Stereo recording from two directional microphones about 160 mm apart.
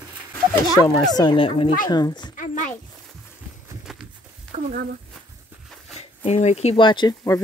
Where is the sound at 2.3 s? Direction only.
50° left (ahead or behind).